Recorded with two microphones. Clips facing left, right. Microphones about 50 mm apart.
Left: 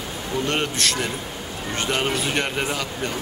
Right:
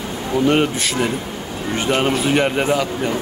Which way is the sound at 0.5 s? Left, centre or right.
Centre.